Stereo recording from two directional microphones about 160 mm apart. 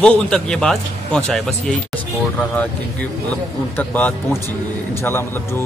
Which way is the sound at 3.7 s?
10° left (ahead or behind).